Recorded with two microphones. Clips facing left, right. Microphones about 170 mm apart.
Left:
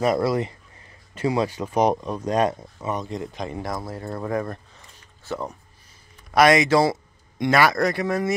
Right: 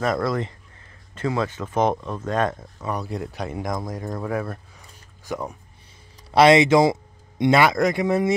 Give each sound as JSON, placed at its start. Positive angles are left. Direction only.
{"t": 0.0, "sound": "speech", "side_deg": 5}
{"t": 2.9, "sound": "speech", "side_deg": -5}
{"t": 4.3, "sound": "a sound", "side_deg": -5}
{"t": 6.3, "sound": "speech", "side_deg": -25}